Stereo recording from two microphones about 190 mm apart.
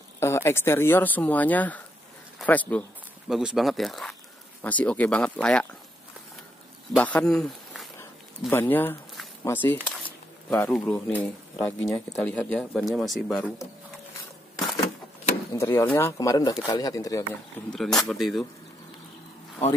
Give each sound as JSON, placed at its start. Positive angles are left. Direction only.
{"t": 0.2, "sound": "speech", "side_deg": 15}
{"t": 7.0, "sound": "speech", "side_deg": 5}
{"t": 8.0, "sound": "a sound", "side_deg": 10}
{"t": 9.4, "sound": "speech", "side_deg": 10}
{"t": 15.5, "sound": "speech", "side_deg": 15}
{"t": 17.6, "sound": "speech", "side_deg": 0}